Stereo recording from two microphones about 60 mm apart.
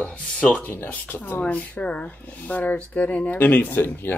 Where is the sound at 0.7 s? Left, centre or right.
Left.